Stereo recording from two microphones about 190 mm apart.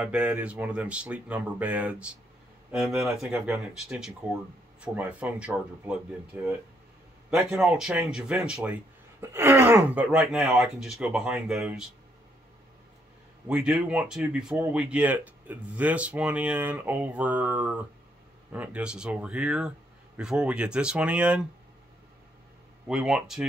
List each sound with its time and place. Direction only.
0.0 s speech: 5° right (ahead or behind)
7.2 s speech: 5° right (ahead or behind)
13.5 s speech: 5° right (ahead or behind)
22.8 s speech: 5° right (ahead or behind)